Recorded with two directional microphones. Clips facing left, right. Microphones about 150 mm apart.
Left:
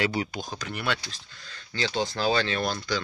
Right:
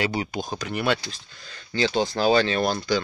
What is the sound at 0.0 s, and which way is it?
Speech, 20° right (ahead or behind).